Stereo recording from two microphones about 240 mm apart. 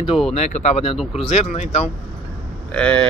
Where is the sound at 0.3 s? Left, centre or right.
Left.